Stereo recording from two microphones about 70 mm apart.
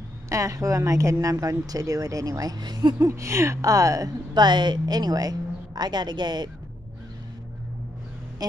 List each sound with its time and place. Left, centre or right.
0.3 s speech: right
2.6 s a woman's voice: right
3.1 s speech: right
4.3 s a woman's voice: right
8.4 s a sound: right